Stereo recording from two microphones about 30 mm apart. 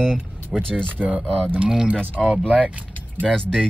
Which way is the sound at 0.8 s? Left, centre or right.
Right.